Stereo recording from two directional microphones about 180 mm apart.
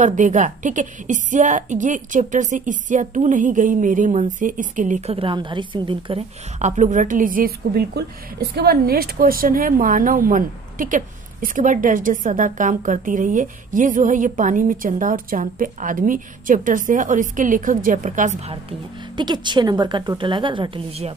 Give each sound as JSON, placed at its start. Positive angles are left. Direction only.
{"t": 0.0, "sound": "a woman's voice", "side_deg": -45}
{"t": 6.6, "sound": "a woman's voice", "side_deg": -45}
{"t": 19.1, "sound": "a woman's voice", "side_deg": -25}